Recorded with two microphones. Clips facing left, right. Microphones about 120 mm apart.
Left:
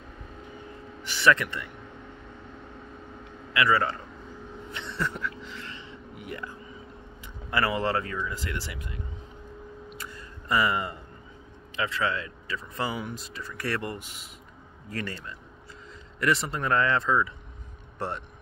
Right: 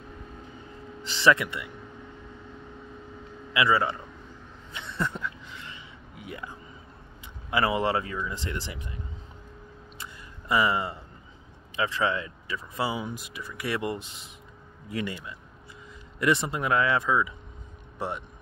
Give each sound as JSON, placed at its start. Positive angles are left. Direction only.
{"t": 1.0, "sound": "speech", "side_deg": -25}
{"t": 3.5, "sound": "speech", "side_deg": -15}
{"t": 4.7, "sound": "a sound", "side_deg": -15}
{"t": 7.5, "sound": "speech", "side_deg": -15}
{"t": 9.9, "sound": "music", "side_deg": -15}
{"t": 11.7, "sound": "speech", "side_deg": -20}